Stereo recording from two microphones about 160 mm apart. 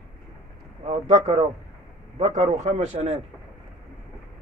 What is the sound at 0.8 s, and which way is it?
A man's voice, 45° right (ahead or behind).